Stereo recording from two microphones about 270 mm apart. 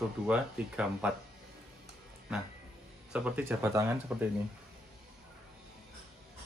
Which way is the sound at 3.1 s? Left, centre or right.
Centre.